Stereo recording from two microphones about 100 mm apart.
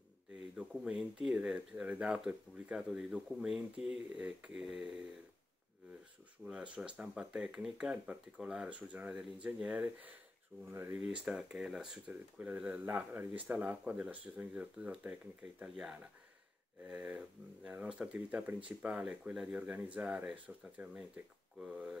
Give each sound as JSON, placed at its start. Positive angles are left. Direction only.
{"t": 0.6, "sound": "speech", "side_deg": -10}
{"t": 6.4, "sound": "speech", "side_deg": -10}
{"t": 10.7, "sound": "speech", "side_deg": -25}
{"t": 11.2, "sound": "speech", "side_deg": -10}